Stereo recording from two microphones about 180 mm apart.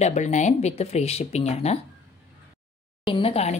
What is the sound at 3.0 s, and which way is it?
Speech, 30° left (ahead or behind).